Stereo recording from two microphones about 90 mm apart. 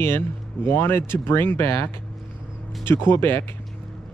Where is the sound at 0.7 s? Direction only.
25° left (ahead or behind).